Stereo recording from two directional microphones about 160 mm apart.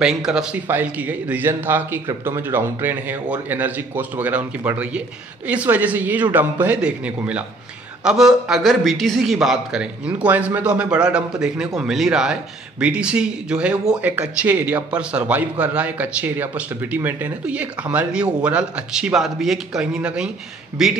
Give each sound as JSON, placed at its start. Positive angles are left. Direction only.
{"t": 0.0, "sound": "a man's voice", "side_deg": -5}